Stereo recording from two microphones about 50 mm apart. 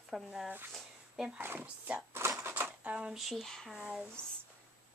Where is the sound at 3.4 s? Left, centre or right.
Centre.